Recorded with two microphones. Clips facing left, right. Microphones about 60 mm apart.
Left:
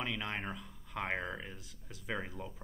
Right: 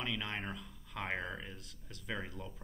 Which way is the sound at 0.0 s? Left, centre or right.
Centre.